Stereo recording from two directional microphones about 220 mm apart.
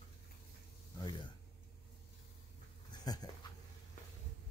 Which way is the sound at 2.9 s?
20° left (ahead or behind).